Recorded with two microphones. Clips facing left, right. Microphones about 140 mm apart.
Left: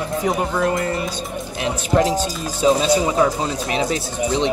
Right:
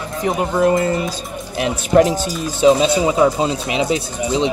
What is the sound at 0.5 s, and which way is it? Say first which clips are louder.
Speech: right 5 dB; 25° right (ahead or behind).